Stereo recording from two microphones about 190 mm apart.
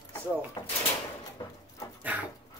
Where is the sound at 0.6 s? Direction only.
20° left (ahead or behind).